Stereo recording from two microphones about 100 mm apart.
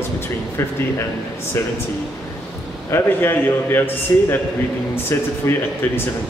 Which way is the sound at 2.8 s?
25° left (ahead or behind).